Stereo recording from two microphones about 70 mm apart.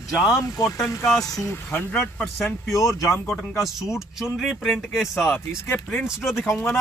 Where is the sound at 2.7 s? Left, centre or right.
Left.